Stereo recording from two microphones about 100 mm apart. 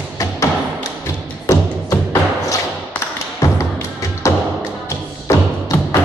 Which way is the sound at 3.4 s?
35° left (ahead or behind).